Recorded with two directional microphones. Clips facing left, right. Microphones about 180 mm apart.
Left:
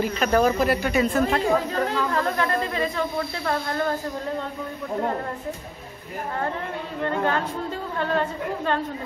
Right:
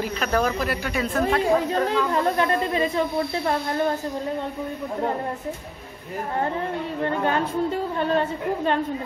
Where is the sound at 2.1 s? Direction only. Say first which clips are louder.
Right 2 dB; 20° right (ahead or behind).